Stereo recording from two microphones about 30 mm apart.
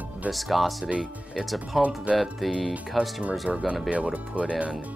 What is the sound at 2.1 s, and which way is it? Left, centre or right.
Speech, right.